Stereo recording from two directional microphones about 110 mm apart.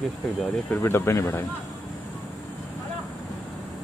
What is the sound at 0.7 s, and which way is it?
Speech, 20° left (ahead or behind).